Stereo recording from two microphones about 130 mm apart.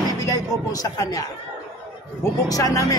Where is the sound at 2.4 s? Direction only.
25° left (ahead or behind).